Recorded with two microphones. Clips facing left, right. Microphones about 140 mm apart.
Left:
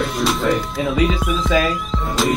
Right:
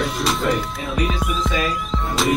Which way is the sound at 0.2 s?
Centre (ahead or behind).